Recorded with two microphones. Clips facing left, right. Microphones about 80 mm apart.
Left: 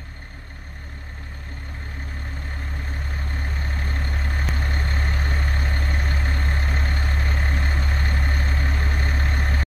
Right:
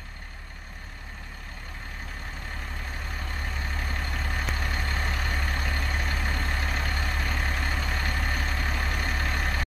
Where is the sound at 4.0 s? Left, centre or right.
Left.